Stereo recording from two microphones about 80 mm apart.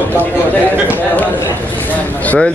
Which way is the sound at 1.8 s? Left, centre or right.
Centre.